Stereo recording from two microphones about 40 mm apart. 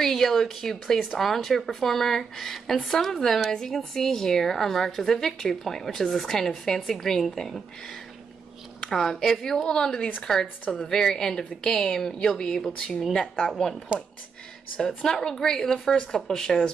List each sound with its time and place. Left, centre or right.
0.0 s a woman's voice: centre
8.8 s a woman's voice: centre
13.9 s speech: right
15.0 s a woman's voice: centre